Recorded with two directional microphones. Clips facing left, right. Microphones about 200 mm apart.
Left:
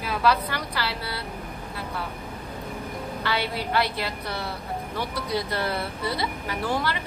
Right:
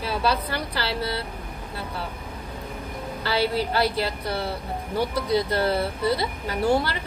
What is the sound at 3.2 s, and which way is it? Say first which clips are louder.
A woman's voice: right 5 dB; 30° right (ahead or behind).